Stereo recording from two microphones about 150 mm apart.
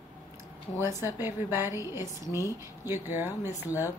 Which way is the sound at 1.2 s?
15° right (ahead or behind).